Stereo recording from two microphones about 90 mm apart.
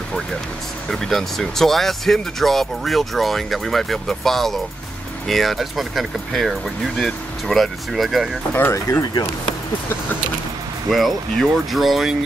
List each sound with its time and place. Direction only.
0.8 s speech: 5° left (ahead or behind)
8.7 s speech: 35° left (ahead or behind)
10.9 s speech: centre (ahead or behind)